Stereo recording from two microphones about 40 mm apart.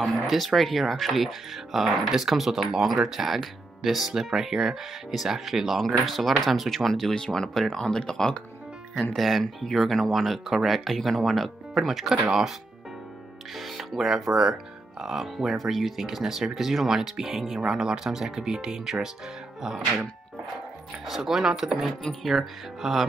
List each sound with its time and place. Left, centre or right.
0.0 s speech: centre; by 8.4 s left
9.1 s speech: centre
13.6 s speech: centre
21.0 s speech: centre